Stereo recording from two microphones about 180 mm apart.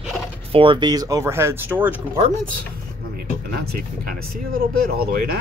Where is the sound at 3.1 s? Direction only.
55° right (ahead or behind).